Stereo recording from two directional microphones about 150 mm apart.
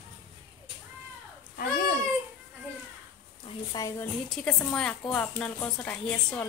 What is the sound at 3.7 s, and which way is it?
Speech, 20° left (ahead or behind).